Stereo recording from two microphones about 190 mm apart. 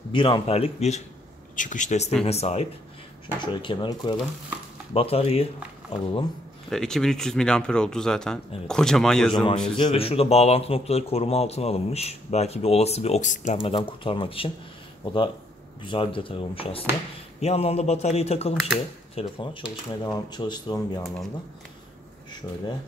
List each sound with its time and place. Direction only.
0.1 s a man's voice: 25° left (ahead or behind)
6.7 s speech: 5° left (ahead or behind)
9.3 s a man's voice: 25° left (ahead or behind)